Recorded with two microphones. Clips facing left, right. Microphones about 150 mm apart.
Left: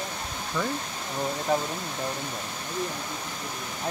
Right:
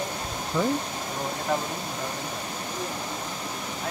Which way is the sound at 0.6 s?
20° right (ahead or behind).